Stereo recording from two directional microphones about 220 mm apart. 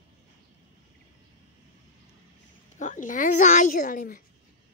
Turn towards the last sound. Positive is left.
turn(degrees=35)  # may be behind; listen again after turning